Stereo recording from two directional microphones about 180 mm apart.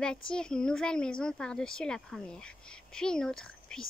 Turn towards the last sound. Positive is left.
turn(degrees=5)  # may be behind; listen again after turning